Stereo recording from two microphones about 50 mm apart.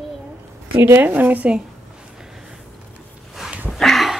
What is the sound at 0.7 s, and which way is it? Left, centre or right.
Speech, right.